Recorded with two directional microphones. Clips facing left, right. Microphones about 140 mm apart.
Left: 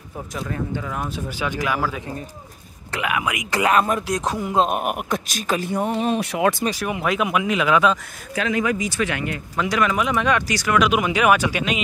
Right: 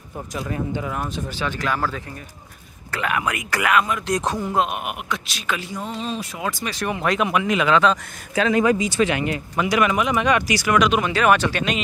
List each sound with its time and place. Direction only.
1.4 s speech: 10° left (ahead or behind)
3.1 s speech: 5° left (ahead or behind)
3.4 s speech: 25° left (ahead or behind)
3.7 s speech: 40° left (ahead or behind)
4.1 s speech: centre (ahead or behind)
4.6 s speech: 45° left (ahead or behind); by 6.5 s 65° left (ahead or behind)
6.7 s speech: 5° left (ahead or behind)
8.4 s speech: 35° right (ahead or behind)
9.6 s speech: 5° right (ahead or behind)
10.8 s speech: 10° left (ahead or behind)